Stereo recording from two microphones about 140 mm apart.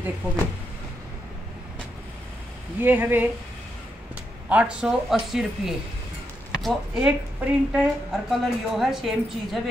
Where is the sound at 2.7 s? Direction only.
15° right (ahead or behind).